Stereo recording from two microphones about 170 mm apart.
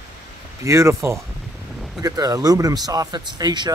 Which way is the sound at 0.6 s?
15° right (ahead or behind).